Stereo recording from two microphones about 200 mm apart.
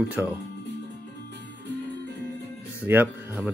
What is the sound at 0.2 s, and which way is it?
Speech, 10° right (ahead or behind).